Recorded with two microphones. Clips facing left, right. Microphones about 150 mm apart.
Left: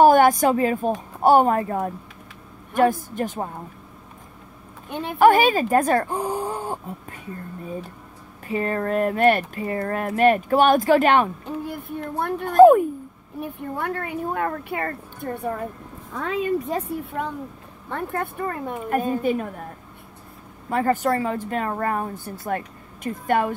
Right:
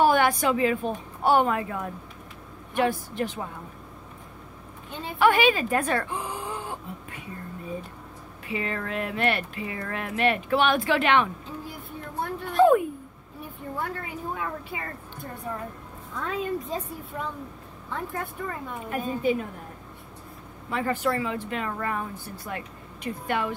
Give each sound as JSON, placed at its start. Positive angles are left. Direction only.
{"t": 0.0, "sound": "a woman's voice", "side_deg": 45}
{"t": 5.2, "sound": "speech", "side_deg": 45}
{"t": 8.5, "sound": "speech", "side_deg": 45}
{"t": 12.2, "sound": "speech", "side_deg": 50}
{"t": 13.4, "sound": "speech", "side_deg": 65}
{"t": 18.9, "sound": "speech", "side_deg": 50}
{"t": 20.7, "sound": "speech", "side_deg": 45}